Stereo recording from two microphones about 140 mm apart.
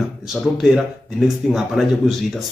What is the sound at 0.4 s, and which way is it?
A man's voice, 5° right (ahead or behind).